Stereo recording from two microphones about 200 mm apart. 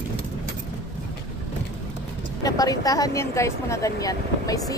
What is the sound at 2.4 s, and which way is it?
Speech, 20° left (ahead or behind).